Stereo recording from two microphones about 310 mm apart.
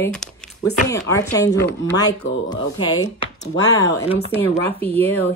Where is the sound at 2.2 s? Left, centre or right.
Left.